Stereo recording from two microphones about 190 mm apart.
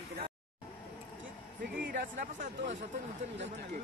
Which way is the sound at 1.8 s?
60° right (ahead or behind).